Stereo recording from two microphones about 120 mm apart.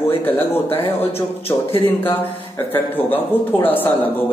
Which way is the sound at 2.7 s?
15° left (ahead or behind).